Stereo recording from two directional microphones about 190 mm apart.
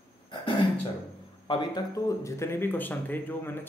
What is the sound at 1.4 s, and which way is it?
Speech, 25° left (ahead or behind).